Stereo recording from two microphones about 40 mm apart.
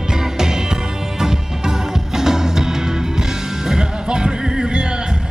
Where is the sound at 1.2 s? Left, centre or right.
Centre.